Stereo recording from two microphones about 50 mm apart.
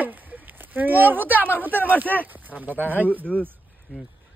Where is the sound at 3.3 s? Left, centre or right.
Centre.